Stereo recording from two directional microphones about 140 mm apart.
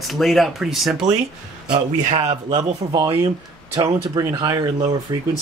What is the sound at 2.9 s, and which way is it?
Speech, 25° right (ahead or behind).